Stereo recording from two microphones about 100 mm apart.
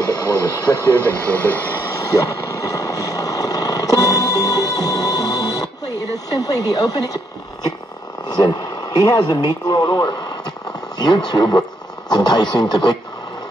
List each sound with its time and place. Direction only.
0.0 s speech: 40° left (ahead or behind)
0.8 s speech: 20° left (ahead or behind)
2.0 s vehicle: 35° left (ahead or behind)
6.1 s speech: 40° left (ahead or behind)
8.3 s speech: 50° left (ahead or behind)